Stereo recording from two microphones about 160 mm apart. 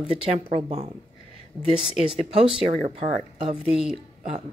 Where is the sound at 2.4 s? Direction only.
35° right (ahead or behind).